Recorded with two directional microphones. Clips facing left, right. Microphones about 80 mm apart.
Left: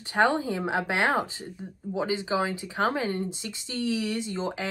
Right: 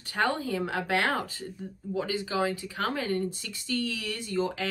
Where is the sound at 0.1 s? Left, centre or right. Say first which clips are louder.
Left 4 dB; left.